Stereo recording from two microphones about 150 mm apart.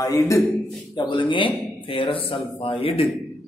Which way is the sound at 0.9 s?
35° left (ahead or behind).